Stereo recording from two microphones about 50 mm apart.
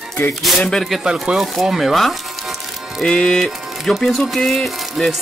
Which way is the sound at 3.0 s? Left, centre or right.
Centre.